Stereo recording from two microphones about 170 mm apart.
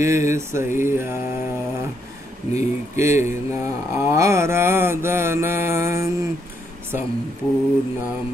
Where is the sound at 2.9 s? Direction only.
15° right (ahead or behind).